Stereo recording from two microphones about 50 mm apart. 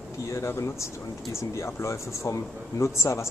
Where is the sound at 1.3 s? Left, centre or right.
Left.